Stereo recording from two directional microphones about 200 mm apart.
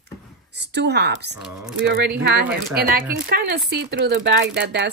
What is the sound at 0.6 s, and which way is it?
A woman's voice, 55° right (ahead or behind).